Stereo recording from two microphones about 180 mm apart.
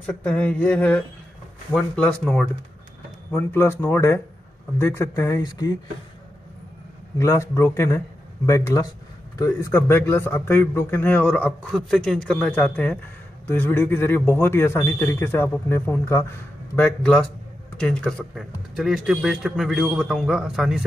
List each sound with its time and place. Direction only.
0.0 s a man's voice: 5° left (ahead or behind)
7.2 s a man's voice: 15° left (ahead or behind); by 20.8 s centre (ahead or behind)